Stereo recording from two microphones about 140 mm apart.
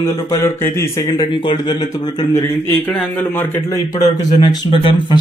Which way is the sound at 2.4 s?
15° left (ahead or behind).